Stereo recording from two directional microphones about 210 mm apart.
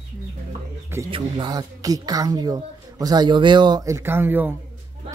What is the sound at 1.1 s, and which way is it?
A woman's voice, 20° right (ahead or behind).